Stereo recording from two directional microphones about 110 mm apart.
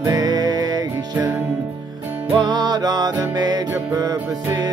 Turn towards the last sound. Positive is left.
turn(degrees=-35)  # may be behind; listen again after turning